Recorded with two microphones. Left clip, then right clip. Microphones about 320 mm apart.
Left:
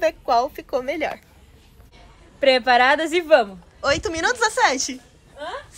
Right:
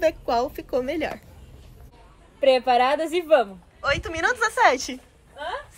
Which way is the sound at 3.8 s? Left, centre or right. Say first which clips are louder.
Left 3 dB; centre.